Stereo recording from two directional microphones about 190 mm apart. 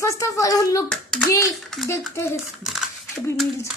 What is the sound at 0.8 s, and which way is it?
Speech, 5° left (ahead or behind).